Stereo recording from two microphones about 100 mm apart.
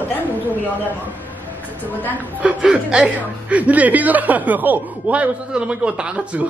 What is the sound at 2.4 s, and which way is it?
Speech, 5° right (ahead or behind).